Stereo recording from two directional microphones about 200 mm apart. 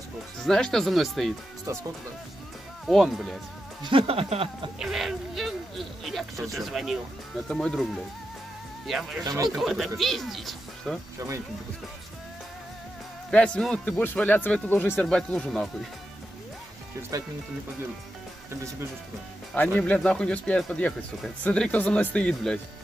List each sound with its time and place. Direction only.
0.4 s speech: centre (ahead or behind)
1.7 s speech: 15° right (ahead or behind)
2.9 s speech: centre (ahead or behind)
3.8 s a sound: 25° right (ahead or behind)
4.7 s speech: centre (ahead or behind)
13.3 s speech: 5° left (ahead or behind)
17.1 s speech: 15° right (ahead or behind)
19.5 s speech: 5° left (ahead or behind)